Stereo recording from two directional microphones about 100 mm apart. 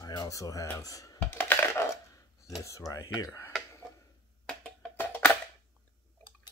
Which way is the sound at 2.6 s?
30° left (ahead or behind).